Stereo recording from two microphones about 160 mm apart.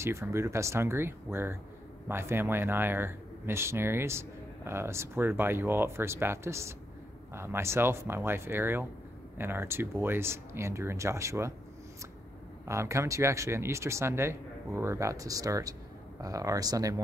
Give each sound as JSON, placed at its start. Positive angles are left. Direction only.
{"t": 0.0, "sound": "speech", "side_deg": -15}
{"t": 12.6, "sound": "speech", "side_deg": -20}